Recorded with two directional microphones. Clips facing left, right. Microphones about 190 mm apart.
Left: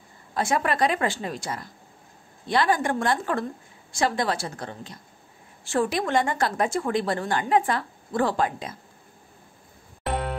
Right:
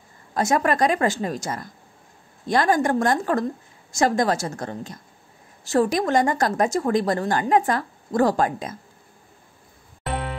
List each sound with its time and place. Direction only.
0.3 s a woman's voice: 40° right (ahead or behind)